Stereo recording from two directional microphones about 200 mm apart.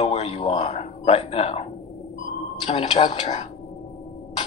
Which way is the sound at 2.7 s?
25° left (ahead or behind).